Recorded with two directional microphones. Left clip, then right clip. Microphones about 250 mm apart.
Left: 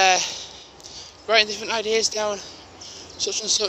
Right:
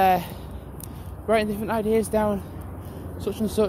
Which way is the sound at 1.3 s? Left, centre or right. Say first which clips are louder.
Left 3 dB; centre.